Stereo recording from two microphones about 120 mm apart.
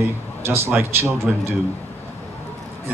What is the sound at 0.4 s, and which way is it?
Speech, 20° right (ahead or behind).